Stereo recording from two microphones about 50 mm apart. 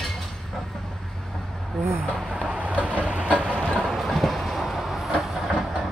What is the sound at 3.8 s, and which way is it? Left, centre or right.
Train, centre.